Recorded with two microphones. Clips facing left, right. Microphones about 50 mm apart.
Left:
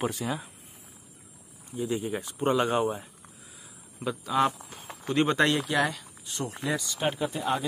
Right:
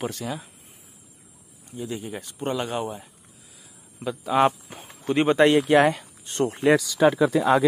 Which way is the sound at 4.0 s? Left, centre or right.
Centre.